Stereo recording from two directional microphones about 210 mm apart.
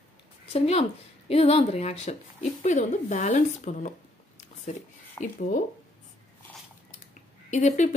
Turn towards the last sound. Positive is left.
turn(degrees=35)  # may be behind; listen again after turning